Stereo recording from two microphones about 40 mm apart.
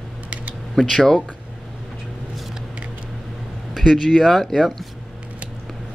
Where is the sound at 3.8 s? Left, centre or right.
Centre.